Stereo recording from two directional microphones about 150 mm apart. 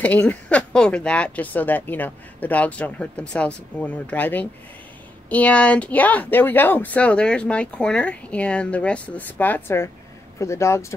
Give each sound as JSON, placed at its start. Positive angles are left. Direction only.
{"t": 0.0, "sound": "speech", "side_deg": 10}